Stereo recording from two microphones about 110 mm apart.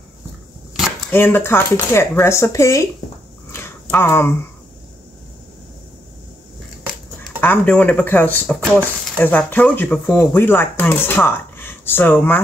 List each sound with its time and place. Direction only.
1.1 s speech: 20° left (ahead or behind)
3.5 s a sound: 20° left (ahead or behind)
7.3 s speech: 15° left (ahead or behind)